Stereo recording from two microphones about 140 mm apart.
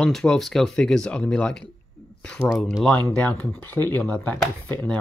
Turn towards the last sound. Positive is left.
turn(degrees=10)  # may be behind; listen again after turning